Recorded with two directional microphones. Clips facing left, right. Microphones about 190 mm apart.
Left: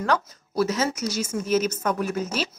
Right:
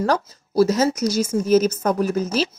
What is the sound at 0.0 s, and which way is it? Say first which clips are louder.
Speech: right 4 dB; 40° right (ahead or behind).